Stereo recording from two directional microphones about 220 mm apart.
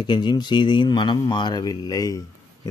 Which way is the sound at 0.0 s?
20° left (ahead or behind).